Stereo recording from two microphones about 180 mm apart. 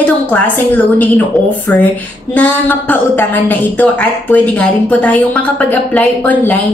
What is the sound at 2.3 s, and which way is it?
Speech, 10° left (ahead or behind).